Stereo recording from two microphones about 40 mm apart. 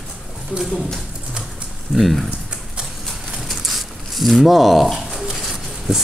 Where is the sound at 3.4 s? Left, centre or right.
Centre.